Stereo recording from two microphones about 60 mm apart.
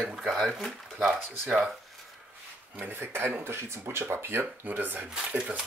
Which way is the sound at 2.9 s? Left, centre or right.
Right.